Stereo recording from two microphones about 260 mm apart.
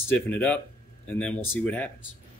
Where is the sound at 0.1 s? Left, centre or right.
Centre.